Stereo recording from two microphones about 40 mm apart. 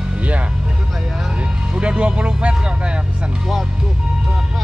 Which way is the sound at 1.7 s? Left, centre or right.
Right.